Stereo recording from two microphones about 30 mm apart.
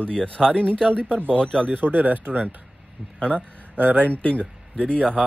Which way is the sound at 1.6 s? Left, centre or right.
Right.